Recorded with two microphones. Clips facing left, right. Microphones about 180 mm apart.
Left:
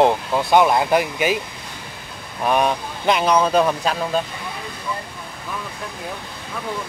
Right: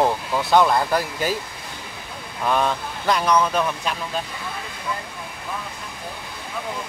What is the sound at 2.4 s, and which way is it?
Speech, 15° left (ahead or behind).